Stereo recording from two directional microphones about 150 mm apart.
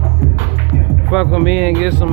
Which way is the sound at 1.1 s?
5° right (ahead or behind).